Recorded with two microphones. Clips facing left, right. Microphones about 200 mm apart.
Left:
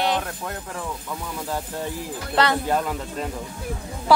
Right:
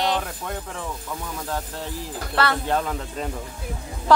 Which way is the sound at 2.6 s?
5° left (ahead or behind).